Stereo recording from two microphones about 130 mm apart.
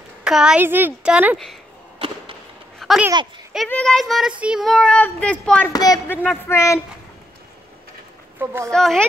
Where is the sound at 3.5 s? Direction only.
5° left (ahead or behind).